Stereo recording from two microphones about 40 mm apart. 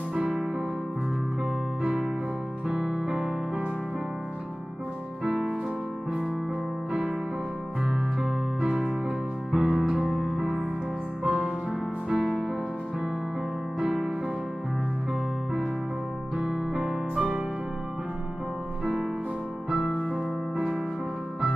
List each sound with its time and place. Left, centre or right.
0.1 s music: centre
1.8 s electric piano: centre
2.7 s music: right
5.2 s music: right
7.8 s music: centre
13.7 s music: centre
16.3 s music: centre